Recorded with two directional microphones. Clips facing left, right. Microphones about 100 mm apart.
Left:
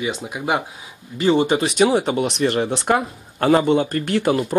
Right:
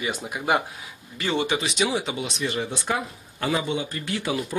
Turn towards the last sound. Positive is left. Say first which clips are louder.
# left 8 dB
turn(degrees=50)  # may be behind; listen again after turning